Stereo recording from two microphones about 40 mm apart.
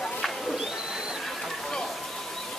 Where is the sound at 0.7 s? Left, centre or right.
Centre.